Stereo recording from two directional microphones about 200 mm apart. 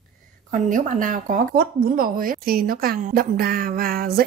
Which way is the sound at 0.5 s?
40° right (ahead or behind).